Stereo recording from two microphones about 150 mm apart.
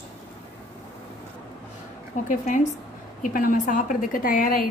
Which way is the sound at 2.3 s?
55° left (ahead or behind).